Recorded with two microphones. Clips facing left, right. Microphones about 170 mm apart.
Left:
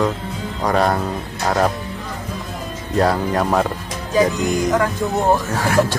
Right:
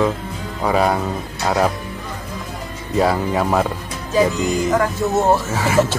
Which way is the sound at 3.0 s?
5° right (ahead or behind).